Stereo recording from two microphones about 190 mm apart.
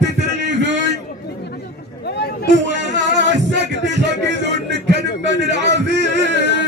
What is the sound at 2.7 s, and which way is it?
Music, 65° right (ahead or behind).